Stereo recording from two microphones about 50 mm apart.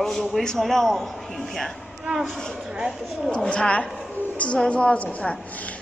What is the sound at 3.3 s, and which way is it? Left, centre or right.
A woman's voice, centre.